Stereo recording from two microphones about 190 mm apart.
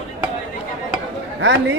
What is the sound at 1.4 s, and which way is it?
Speech, 70° right (ahead or behind).